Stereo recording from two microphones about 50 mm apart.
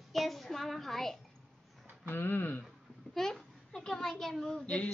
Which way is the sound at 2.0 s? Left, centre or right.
Left.